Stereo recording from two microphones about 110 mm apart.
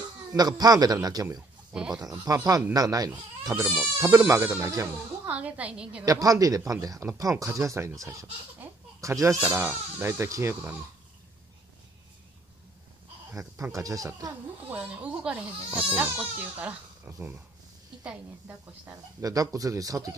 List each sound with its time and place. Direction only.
0.4 s speech: 35° right (ahead or behind)
1.7 s speech: 10° right (ahead or behind)
2.2 s speech: 30° right (ahead or behind)
5.2 s speech: 15° right (ahead or behind)
6.0 s speech: 30° right (ahead or behind)
9.5 s speech: 15° right (ahead or behind)
10.5 s speech: 15° right (ahead or behind)
13.4 s speech: 30° right (ahead or behind)
14.7 s speech: 10° right (ahead or behind)
19.2 s speech: 35° right (ahead or behind)